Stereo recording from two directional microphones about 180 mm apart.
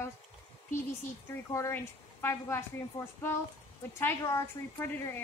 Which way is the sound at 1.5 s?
15° left (ahead or behind).